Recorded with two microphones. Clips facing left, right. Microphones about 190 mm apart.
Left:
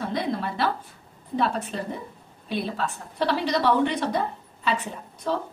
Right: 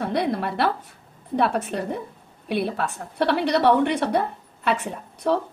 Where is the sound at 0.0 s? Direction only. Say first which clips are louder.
Right 4 dB; 65° right (ahead or behind).